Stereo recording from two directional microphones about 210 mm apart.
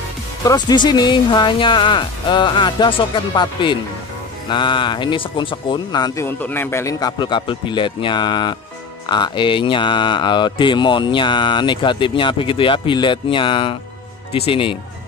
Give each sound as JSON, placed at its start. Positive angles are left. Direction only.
{"t": 0.5, "sound": "speech", "side_deg": 20}